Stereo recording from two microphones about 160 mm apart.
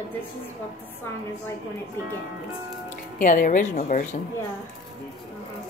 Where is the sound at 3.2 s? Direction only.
55° left (ahead or behind).